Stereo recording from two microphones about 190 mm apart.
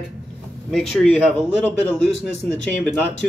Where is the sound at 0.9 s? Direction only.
Centre (ahead or behind).